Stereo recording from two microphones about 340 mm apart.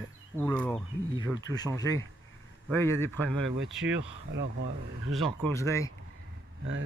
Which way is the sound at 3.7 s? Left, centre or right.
Right.